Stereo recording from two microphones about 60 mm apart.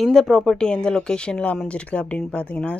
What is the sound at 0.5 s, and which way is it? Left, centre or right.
Speech, centre.